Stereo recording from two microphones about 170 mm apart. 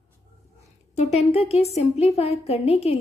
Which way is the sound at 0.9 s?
40° left (ahead or behind).